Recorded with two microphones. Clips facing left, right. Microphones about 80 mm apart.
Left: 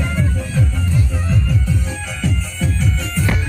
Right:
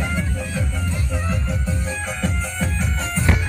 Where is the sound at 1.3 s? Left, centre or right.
Right.